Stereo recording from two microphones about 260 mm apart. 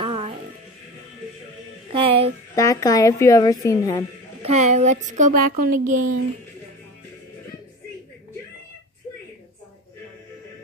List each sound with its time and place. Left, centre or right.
0.0 s music: centre
1.9 s music: right
2.5 s a woman's voice: centre
4.4 s speech: right